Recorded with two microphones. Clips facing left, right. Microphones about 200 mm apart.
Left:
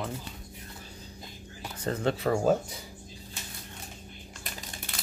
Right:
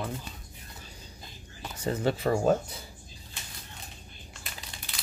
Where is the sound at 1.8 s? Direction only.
5° right (ahead or behind).